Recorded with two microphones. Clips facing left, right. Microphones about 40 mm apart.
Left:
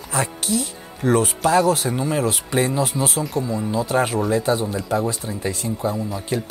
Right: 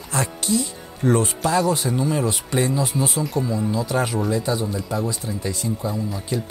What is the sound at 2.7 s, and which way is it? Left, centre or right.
Speech, left.